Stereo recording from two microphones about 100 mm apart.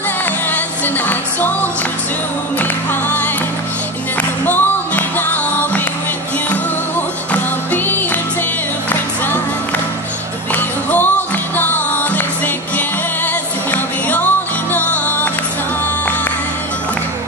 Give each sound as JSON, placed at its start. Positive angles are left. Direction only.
{"t": 0.2, "sound": "music", "side_deg": 20}
{"t": 4.5, "sound": "music", "side_deg": 20}
{"t": 7.3, "sound": "music", "side_deg": 20}
{"t": 10.5, "sound": "music", "side_deg": 20}